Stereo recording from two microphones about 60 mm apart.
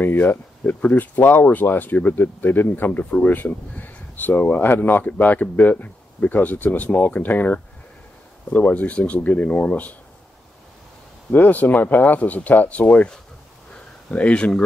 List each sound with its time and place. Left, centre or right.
0.0 s speech: left
11.3 s speech: left
14.1 s speech: centre